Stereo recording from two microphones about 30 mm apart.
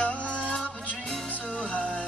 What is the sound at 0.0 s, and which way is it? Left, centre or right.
Music, left.